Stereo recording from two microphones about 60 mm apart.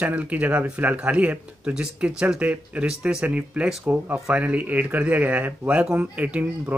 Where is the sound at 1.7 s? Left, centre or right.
Centre.